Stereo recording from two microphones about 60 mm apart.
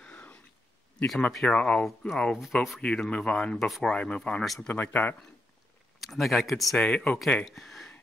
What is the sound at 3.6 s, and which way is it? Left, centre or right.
Speech, centre.